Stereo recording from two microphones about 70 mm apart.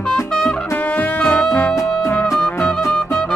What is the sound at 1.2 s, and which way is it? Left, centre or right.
Music, centre.